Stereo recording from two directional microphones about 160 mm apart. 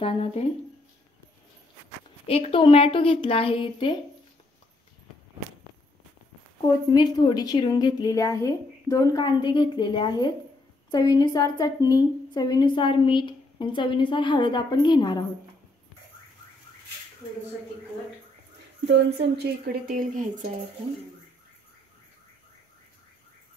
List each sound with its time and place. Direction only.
0.0 s a woman's voice: 35° left (ahead or behind)
2.2 s a woman's voice: 35° left (ahead or behind)
6.9 s a woman's voice: 25° left (ahead or behind)
18.9 s speech: 90° right; by 20.4 s 55° right (ahead or behind)